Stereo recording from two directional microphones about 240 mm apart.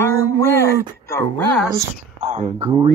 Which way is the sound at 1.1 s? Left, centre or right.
Centre.